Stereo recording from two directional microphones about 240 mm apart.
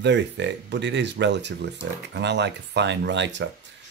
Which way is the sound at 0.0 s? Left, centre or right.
Right.